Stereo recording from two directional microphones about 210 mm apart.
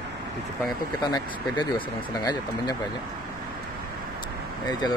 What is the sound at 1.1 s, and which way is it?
Speech, 20° left (ahead or behind).